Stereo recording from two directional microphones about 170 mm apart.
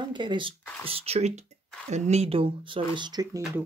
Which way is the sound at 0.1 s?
25° right (ahead or behind).